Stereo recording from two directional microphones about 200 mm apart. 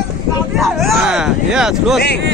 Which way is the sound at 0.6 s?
Centre (ahead or behind).